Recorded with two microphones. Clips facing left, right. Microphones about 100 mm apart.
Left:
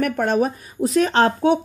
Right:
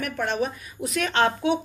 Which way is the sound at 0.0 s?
45° left (ahead or behind).